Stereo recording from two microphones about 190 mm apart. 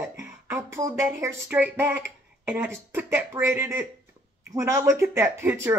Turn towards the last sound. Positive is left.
turn(degrees=-15)  # may be behind; listen again after turning